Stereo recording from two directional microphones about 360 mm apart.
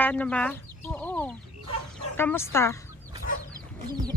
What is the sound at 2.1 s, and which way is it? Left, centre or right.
Speech, centre.